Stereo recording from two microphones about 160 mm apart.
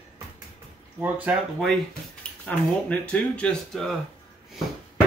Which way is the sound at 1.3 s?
10° right (ahead or behind).